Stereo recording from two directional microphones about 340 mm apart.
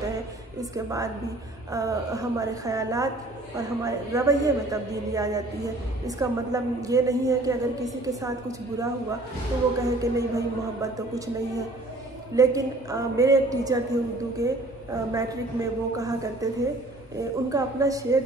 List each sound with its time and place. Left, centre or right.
0.0 s a woman's voice: centre